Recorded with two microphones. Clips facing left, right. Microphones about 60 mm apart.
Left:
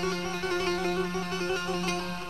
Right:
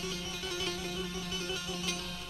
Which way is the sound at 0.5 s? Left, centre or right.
Left.